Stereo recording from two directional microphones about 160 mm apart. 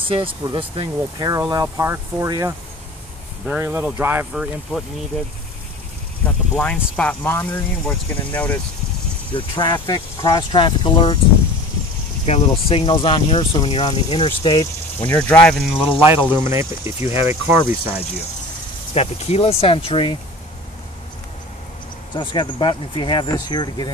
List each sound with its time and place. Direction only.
0.1 s speech: 35° right (ahead or behind); by 4.8 s 5° right (ahead or behind)
6.2 s speech: 5° left (ahead or behind)
9.3 s speech: 30° left (ahead or behind)
12.3 s speech: 35° left (ahead or behind)
15.0 s speech: 15° left (ahead or behind)
16.0 s speech: 15° right (ahead or behind)
18.9 s speech: 40° left (ahead or behind)
22.1 s speech: 30° left (ahead or behind)